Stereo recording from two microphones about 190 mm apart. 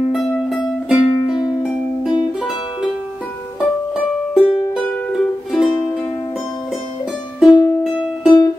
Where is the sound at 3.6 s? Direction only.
Centre (ahead or behind).